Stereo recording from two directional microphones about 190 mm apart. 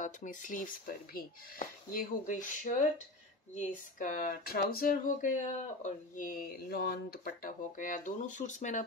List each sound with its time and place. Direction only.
0.0 s speech: 40° left (ahead or behind)